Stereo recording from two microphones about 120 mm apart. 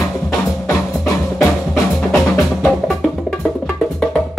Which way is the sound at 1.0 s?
25° left (ahead or behind).